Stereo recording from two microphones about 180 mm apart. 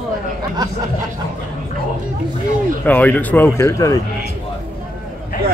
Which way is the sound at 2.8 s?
10° left (ahead or behind).